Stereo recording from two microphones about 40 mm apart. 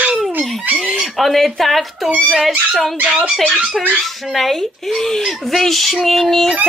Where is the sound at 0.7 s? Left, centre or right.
Centre.